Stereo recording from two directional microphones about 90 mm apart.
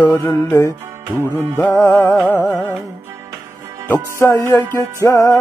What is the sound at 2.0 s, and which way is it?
Music, 20° left (ahead or behind).